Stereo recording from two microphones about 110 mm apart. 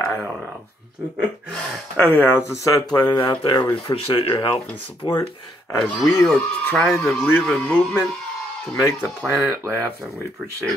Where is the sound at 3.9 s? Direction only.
60° left (ahead or behind).